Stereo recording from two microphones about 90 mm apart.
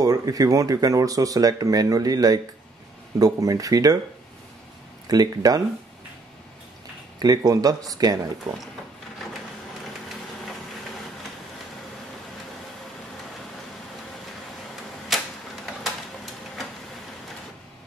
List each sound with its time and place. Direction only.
0.0 s speech: 45° right (ahead or behind)
5.0 s speech: 45° right (ahead or behind)
7.2 s speech: 45° right (ahead or behind)
15.1 s arrow: centre (ahead or behind)